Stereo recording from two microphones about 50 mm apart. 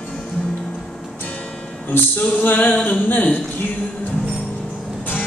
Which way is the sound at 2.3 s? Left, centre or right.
Left.